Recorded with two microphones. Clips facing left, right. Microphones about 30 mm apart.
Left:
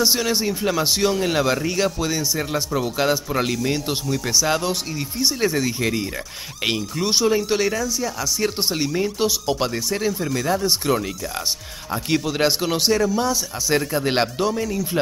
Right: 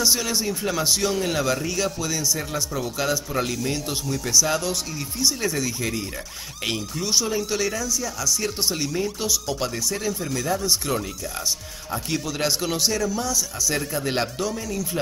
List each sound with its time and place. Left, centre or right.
0.0 s speech: left
0.8 s speech: left
14.5 s speech: centre